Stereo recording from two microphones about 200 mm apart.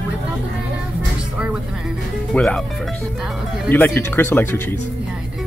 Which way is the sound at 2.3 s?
5° left (ahead or behind).